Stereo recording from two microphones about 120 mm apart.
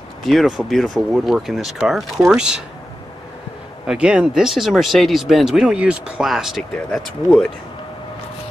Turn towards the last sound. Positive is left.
turn(degrees=5)  # may be behind; listen again after turning